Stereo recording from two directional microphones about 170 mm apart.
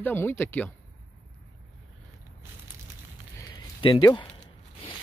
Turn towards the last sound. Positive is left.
turn(degrees=25)  # may be behind; listen again after turning